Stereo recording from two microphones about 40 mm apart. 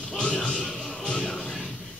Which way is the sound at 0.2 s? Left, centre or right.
Left.